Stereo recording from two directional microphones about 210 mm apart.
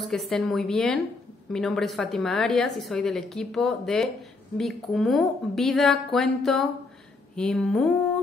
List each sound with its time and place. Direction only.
0.0 s a woman's voice: centre (ahead or behind)